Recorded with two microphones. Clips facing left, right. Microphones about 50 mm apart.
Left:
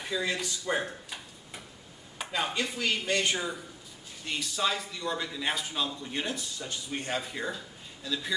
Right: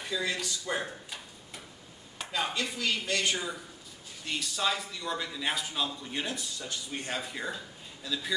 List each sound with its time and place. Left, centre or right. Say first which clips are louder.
0.1 s a man's voice: left 1 dB; centre